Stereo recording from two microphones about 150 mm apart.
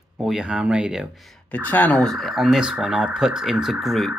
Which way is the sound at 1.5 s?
10° left (ahead or behind).